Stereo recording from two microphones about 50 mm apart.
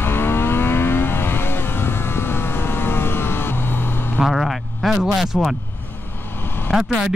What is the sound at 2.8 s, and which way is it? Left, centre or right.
Vehicle, left.